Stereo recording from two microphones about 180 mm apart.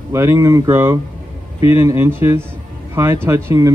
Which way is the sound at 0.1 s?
15° right (ahead or behind).